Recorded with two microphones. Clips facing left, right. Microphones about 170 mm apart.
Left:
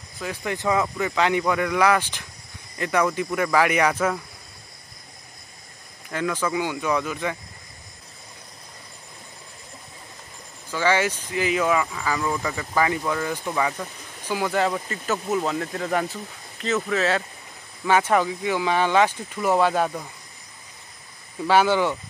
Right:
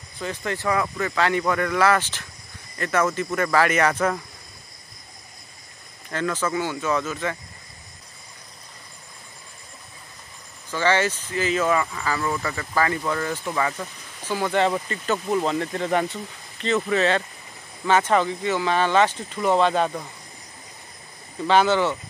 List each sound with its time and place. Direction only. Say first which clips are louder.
0.2 s speech: even; 10° left (ahead or behind)
6.0 s speech: even; 10° left (ahead or behind)
10.7 s speech: even; 10° left (ahead or behind)
21.5 s speech: even; 10° left (ahead or behind)